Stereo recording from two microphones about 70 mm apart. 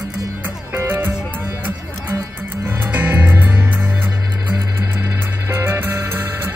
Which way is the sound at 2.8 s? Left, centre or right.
Right.